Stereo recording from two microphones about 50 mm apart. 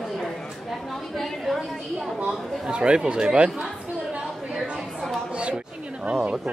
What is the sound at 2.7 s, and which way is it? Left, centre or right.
Speech, centre.